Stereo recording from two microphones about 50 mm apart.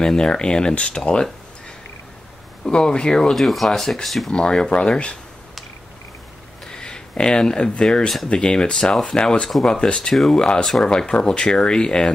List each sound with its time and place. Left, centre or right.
0.0 s speech: centre
2.6 s speech: centre
4.3 s speech: centre
6.7 s a sound: centre
7.8 s speech: centre
9.9 s speech: centre